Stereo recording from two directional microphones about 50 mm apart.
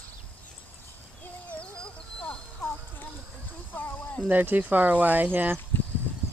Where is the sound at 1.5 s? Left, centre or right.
Left.